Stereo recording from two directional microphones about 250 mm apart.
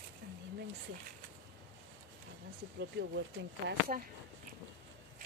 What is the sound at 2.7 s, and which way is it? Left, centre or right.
Speech, right.